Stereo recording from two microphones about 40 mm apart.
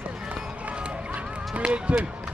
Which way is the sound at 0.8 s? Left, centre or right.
Right.